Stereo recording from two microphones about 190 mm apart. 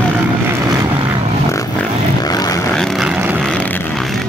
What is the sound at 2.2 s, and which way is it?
Vehicle, 20° left (ahead or behind).